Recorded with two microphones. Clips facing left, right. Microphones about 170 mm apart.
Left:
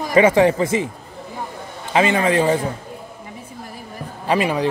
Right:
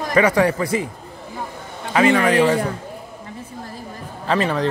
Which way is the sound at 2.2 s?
20° left (ahead or behind).